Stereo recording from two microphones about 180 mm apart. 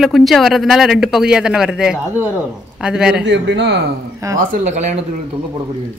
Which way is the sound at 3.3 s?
80° right.